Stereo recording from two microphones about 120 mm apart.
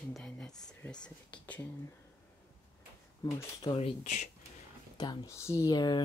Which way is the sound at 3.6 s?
55° left (ahead or behind).